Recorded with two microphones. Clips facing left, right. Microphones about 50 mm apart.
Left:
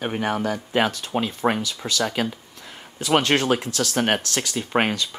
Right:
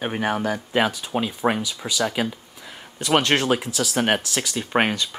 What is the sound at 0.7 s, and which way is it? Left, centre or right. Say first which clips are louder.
Speech: even; centre.